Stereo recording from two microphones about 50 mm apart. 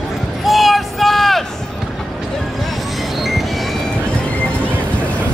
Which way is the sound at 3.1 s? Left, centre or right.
Centre.